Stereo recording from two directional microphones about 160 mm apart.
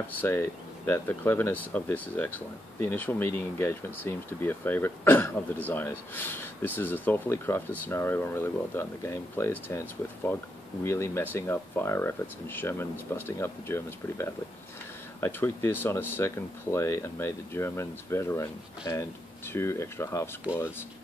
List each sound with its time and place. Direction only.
0.2 s speech: 15° left (ahead or behind)
10.8 s speech: 15° left (ahead or behind)